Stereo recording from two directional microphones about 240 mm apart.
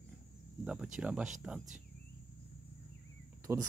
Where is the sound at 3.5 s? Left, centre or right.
Centre.